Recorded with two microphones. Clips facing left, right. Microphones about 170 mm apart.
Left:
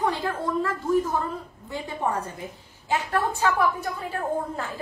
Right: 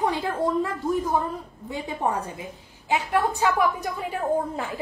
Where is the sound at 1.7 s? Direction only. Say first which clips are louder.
Right 1 dB; 15° right (ahead or behind).